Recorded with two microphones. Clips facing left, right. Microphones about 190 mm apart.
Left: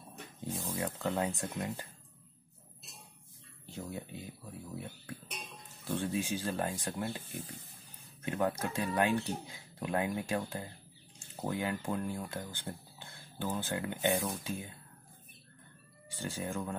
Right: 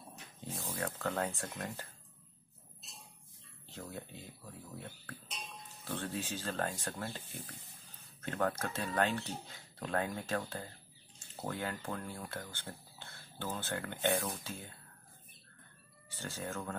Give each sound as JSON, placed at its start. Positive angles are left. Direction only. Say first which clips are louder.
{"t": 0.8, "sound": "speech", "louder": "left 2 dB", "side_deg": 15}
{"t": 3.6, "sound": "speech", "louder": "left 4 dB", "side_deg": 15}
{"t": 16.1, "sound": "speech", "louder": "left 4 dB", "side_deg": 15}